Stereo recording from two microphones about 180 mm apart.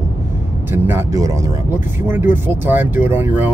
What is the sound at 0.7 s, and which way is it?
Speech, 15° right (ahead or behind).